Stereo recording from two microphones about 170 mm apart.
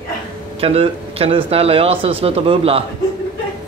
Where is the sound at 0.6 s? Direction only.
35° right (ahead or behind).